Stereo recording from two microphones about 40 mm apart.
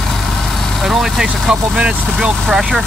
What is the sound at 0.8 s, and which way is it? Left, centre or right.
Speech, centre.